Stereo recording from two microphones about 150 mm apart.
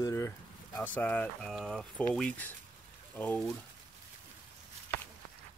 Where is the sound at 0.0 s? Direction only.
20° left (ahead or behind).